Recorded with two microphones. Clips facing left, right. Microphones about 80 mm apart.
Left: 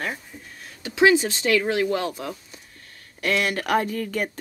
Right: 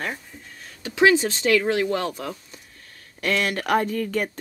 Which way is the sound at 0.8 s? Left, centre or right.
Centre.